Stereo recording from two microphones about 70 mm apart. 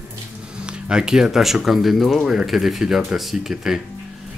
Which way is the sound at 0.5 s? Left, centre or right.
Centre.